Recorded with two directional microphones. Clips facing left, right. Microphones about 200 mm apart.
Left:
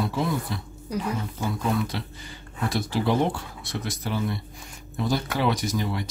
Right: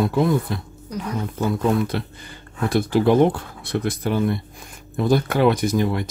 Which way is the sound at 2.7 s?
55° right (ahead or behind).